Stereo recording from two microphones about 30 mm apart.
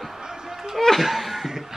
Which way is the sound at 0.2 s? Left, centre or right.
Centre.